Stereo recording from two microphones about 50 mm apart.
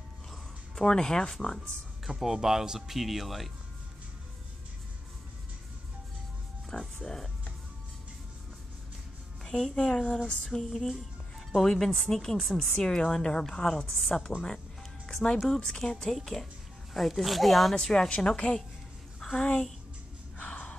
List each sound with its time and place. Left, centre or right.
0.7 s a woman's voice: centre
2.0 s speech: centre
6.7 s speech: centre
9.4 s music: centre
9.8 s a woman's voice: centre
10.6 s a woman's voice: centre
16.9 s speech: centre
17.7 s a woman's voice: centre
20.3 s gasp: left